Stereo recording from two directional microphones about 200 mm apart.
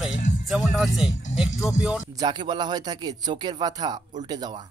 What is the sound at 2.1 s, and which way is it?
Speech, 20° right (ahead or behind).